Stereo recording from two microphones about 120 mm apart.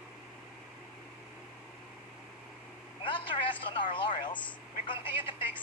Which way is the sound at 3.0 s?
45° left (ahead or behind).